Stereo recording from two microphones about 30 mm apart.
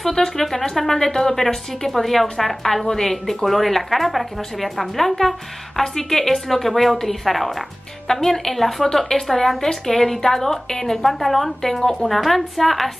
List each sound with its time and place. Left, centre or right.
0.1 s a woman's voice: centre
8.1 s a woman's voice: centre
8.5 s a woman's voice: centre